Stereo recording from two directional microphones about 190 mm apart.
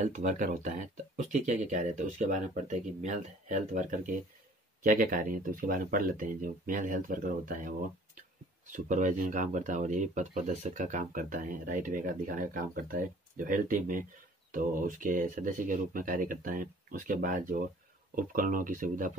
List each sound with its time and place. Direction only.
0.0 s speech: 40° right (ahead or behind)